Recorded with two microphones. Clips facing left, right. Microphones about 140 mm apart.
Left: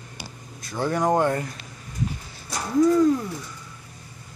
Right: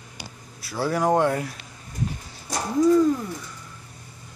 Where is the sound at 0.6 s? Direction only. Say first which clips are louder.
Even; 5° right (ahead or behind).